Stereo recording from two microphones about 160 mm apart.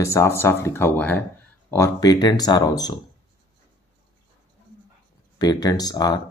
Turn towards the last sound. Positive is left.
turn(degrees=25)  # may be behind; listen again after turning